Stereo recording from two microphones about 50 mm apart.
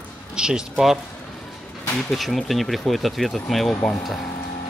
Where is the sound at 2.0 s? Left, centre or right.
Centre.